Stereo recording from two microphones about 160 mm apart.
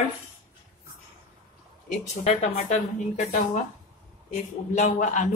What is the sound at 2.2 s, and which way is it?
Speech, 45° left (ahead or behind).